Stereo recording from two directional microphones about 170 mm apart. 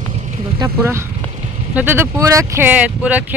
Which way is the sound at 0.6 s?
15° right (ahead or behind).